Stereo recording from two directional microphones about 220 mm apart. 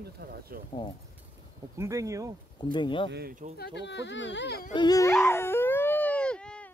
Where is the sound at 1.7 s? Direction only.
15° right (ahead or behind).